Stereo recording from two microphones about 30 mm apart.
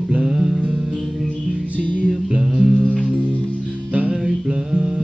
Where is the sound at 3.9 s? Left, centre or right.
Right.